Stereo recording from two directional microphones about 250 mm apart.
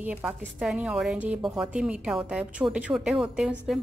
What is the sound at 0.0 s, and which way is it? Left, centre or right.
A woman's voice, centre.